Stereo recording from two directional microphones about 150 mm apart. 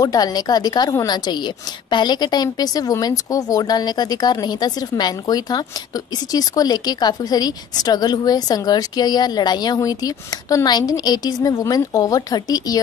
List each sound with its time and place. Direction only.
0.0 s a woman's voice: 25° left (ahead or behind)